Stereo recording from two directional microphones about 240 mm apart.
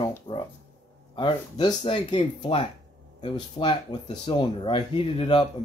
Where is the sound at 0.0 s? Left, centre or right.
Centre.